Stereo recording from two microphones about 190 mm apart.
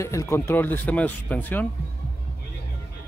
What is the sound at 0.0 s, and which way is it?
Speech, 15° left (ahead or behind).